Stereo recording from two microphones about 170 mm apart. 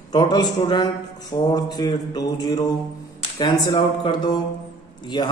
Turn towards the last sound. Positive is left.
turn(degrees=25)  # may be behind; listen again after turning